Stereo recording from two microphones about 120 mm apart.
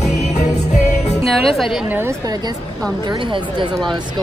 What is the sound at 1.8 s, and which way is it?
Speech, 15° right (ahead or behind).